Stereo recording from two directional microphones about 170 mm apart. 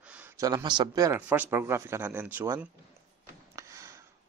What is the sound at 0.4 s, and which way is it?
Speech, 20° right (ahead or behind).